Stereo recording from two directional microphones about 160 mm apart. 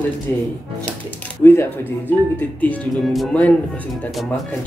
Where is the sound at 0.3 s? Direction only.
15° left (ahead or behind).